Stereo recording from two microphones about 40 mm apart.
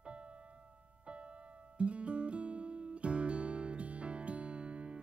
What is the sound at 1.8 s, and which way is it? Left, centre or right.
Music, right.